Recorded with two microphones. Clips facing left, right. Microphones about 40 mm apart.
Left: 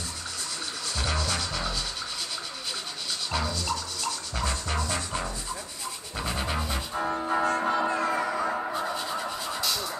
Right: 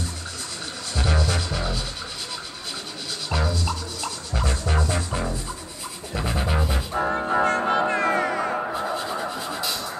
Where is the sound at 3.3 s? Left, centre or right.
Centre.